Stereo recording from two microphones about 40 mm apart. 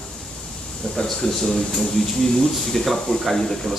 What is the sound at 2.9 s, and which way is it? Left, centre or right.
Speech, centre.